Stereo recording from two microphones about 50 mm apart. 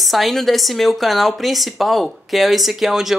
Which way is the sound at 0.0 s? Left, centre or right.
Centre.